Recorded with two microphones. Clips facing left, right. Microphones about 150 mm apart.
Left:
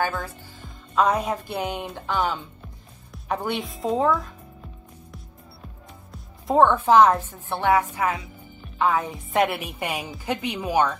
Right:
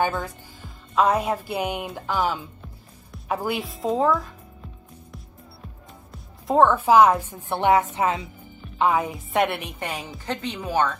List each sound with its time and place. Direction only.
0.9 s a woman's voice: 5° right (ahead or behind)
6.1 s a woman's voice: centre (ahead or behind); by 8.3 s 25° right (ahead or behind)
8.7 s music: 15° right (ahead or behind)
9.1 s a woman's voice: centre (ahead or behind)